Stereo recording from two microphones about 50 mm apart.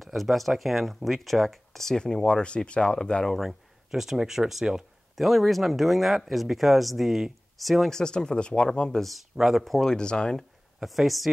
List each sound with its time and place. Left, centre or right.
0.0 s speech: centre
3.3 s speech: centre
7.9 s speech: centre
9.0 s speech: centre
9.8 s speech: centre
10.8 s speech: centre